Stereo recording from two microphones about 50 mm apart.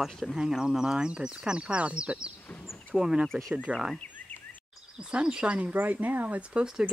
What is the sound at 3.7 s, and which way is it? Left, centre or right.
Speech, right.